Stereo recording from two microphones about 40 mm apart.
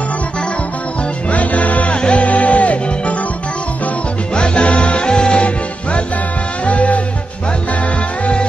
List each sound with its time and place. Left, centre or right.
1.3 s music: left
2.0 s music: left
2.2 s music: left
4.4 s music: left